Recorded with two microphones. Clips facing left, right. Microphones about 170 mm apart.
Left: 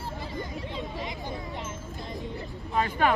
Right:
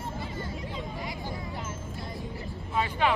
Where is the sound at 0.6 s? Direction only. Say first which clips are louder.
Left 2 dB; 25° left (ahead or behind).